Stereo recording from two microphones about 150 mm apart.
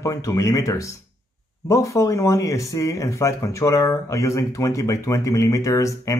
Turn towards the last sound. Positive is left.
turn(degrees=20)  # may be behind; listen again after turning